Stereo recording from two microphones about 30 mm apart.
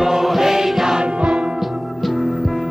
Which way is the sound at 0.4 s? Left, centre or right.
Centre.